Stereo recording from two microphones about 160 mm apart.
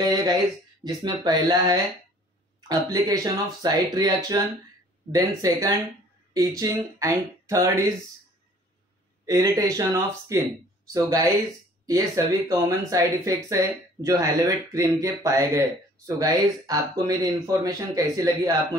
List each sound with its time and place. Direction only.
0.0 s a sound: 25° right (ahead or behind)
0.8 s speech: 25° right (ahead or behind)
9.2 s speech: 20° right (ahead or behind)